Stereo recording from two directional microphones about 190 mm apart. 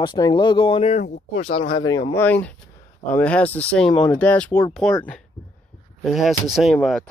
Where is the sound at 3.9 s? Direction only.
25° left (ahead or behind).